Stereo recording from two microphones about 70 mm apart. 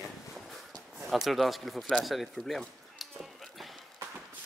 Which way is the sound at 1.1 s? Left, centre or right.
Centre.